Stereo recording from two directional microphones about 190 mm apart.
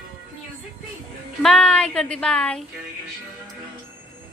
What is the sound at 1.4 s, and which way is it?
Speech, 5° left (ahead or behind).